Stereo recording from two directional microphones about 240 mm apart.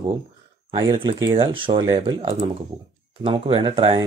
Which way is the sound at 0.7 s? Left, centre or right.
Right.